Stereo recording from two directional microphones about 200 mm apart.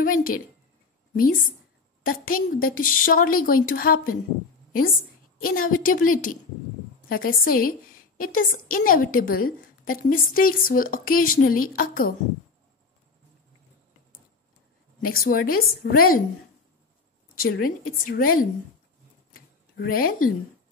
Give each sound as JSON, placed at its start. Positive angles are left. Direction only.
{"t": 0.0, "sound": "a woman's voice", "side_deg": 45}
{"t": 5.4, "sound": "a woman's voice", "side_deg": 45}
{"t": 15.0, "sound": "a woman's voice", "side_deg": 45}
{"t": 17.4, "sound": "a woman's voice", "side_deg": 45}
{"t": 19.8, "sound": "a woman's voice", "side_deg": 45}